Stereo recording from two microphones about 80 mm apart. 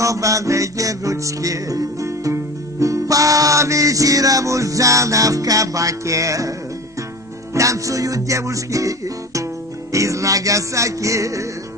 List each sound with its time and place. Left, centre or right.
0.0 s music: right
7.5 s music: right